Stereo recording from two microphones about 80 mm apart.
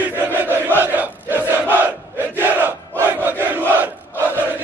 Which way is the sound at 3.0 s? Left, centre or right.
Right.